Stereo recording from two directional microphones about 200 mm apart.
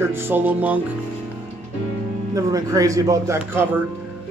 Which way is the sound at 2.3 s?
15° right (ahead or behind).